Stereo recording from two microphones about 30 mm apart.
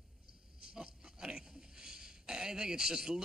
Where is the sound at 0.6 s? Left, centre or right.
Right.